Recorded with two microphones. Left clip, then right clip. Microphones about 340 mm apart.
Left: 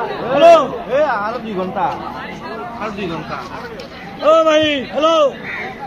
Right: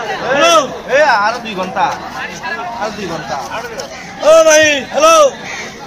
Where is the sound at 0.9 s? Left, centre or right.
Right.